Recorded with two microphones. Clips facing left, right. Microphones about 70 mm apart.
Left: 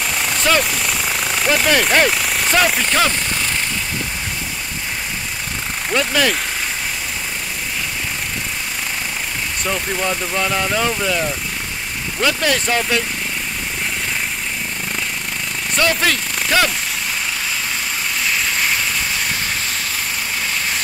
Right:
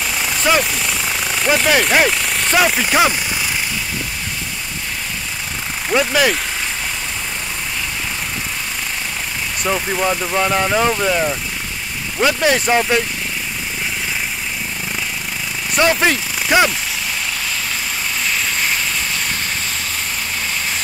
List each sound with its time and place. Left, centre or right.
0.0 s vehicle: centre
0.6 s speech: centre
5.9 s speech: centre
9.7 s speech: centre
15.8 s speech: centre
18.2 s vehicle: centre